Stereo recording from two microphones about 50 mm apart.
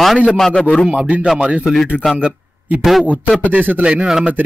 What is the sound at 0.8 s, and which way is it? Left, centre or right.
Speech, right.